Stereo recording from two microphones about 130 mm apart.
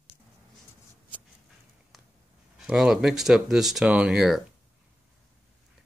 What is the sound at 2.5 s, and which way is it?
Speech, 5° right (ahead or behind).